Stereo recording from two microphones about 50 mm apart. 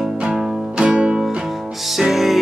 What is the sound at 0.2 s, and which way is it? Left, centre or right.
Music, centre.